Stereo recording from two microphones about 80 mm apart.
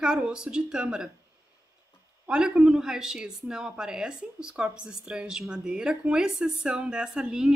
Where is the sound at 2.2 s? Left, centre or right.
Centre.